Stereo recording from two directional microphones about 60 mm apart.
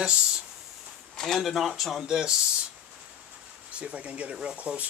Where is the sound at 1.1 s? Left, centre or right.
Centre.